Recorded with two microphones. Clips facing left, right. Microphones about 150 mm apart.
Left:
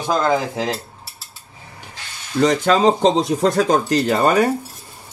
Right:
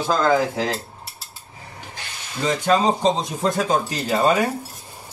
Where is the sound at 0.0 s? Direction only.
20° left (ahead or behind).